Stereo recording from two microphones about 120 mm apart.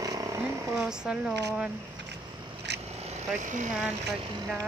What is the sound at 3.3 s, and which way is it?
Speech, 90° right.